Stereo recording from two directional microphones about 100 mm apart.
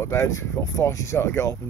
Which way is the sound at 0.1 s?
30° left (ahead or behind).